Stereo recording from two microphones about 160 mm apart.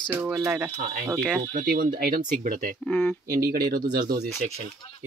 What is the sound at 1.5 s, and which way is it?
Speech, 60° right (ahead or behind).